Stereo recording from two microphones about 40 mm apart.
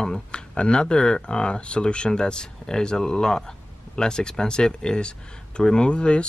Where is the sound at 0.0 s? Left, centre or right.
Left.